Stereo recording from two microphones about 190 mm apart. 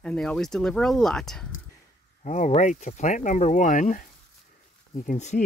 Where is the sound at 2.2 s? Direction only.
40° left (ahead or behind).